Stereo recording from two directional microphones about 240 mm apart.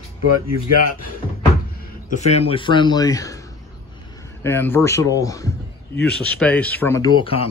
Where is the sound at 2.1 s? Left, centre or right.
Left; by 3.4 s centre.